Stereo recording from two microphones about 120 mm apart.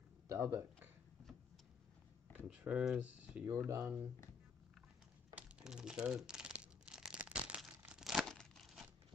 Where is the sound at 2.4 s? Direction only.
10° right (ahead or behind).